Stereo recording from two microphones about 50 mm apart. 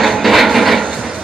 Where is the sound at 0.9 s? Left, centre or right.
Centre.